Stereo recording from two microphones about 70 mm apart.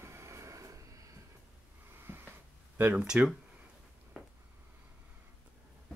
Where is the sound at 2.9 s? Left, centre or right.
Centre.